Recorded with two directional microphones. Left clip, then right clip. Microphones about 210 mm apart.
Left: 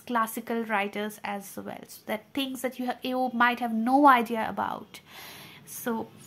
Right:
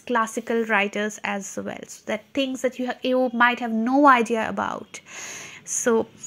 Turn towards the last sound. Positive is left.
turn(degrees=-30)  # may be behind; listen again after turning